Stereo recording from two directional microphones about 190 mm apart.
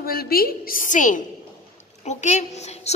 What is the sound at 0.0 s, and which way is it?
A woman's voice, 50° left (ahead or behind).